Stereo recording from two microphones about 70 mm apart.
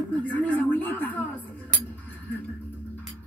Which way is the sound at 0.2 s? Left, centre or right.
Left.